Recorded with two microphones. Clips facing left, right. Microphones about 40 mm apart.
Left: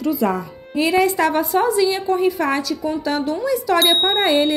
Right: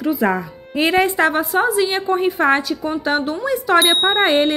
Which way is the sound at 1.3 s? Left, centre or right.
Centre.